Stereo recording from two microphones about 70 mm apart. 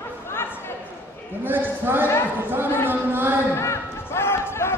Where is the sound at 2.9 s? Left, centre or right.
Right.